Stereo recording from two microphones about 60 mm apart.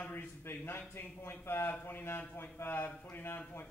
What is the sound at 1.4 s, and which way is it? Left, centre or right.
A man's voice, left.